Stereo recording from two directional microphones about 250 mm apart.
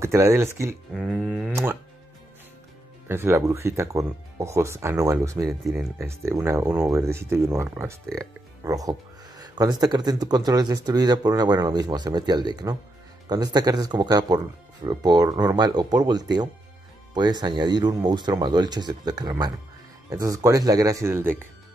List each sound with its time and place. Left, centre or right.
0.0 s speech: centre
3.1 s speech: centre